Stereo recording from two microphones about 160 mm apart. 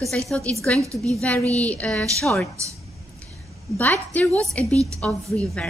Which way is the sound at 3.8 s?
10° left (ahead or behind).